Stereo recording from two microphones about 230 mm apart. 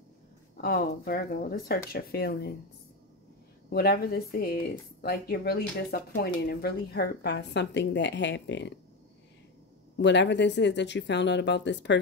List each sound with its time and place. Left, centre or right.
0.6 s speech: left
3.7 s speech: left
9.9 s speech: left